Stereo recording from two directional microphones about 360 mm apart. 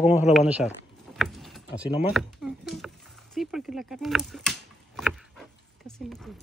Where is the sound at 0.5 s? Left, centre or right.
Centre.